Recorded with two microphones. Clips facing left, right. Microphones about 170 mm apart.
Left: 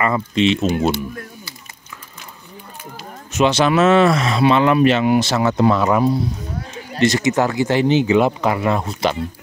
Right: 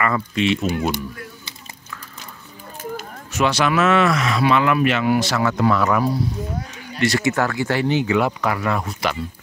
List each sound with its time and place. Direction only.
0.0 s speech: 25° left (ahead or behind)
3.3 s speech: 20° left (ahead or behind)